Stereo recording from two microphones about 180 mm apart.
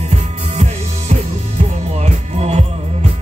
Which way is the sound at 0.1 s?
40° right (ahead or behind).